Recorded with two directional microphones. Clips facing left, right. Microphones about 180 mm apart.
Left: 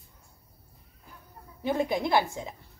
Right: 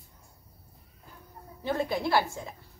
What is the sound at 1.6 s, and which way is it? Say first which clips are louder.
Speech: left 2 dB; 15° left (ahead or behind).